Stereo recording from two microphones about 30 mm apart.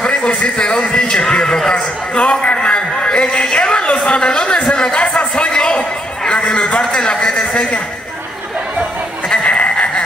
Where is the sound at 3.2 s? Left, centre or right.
Left.